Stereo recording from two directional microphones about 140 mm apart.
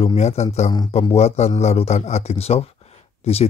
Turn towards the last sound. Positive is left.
turn(degrees=45)  # may be behind; listen again after turning